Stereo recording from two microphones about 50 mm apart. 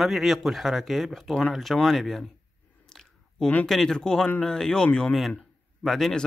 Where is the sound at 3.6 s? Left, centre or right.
Centre.